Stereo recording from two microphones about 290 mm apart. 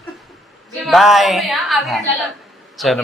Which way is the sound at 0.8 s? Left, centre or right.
Centre.